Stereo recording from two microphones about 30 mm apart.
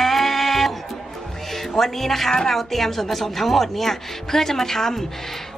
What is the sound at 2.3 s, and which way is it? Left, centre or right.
Speech, centre.